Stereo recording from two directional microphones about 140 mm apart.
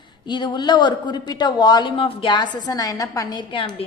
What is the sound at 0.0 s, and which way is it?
A woman's voice, 30° left (ahead or behind).